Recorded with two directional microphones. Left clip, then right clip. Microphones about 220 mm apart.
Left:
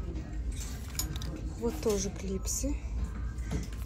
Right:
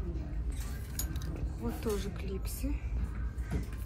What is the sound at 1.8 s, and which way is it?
A woman's voice, 15° left (ahead or behind).